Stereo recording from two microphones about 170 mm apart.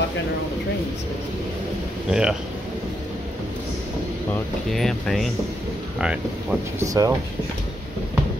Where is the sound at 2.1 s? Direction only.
5° right (ahead or behind).